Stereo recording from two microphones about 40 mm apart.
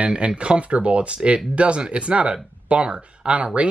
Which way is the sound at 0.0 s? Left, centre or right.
Right.